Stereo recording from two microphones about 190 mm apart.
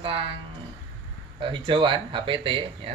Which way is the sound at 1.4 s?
25° right (ahead or behind).